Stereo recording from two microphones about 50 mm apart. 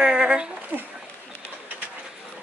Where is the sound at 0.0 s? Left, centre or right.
Centre.